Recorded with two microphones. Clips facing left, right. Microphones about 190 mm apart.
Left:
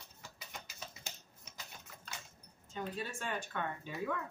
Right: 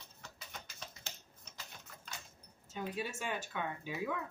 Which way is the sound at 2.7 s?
10° right (ahead or behind).